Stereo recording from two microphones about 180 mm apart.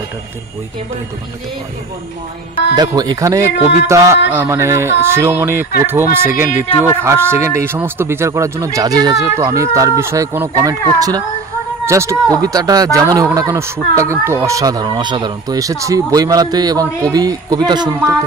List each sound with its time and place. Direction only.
2.7 s speech: 20° right (ahead or behind)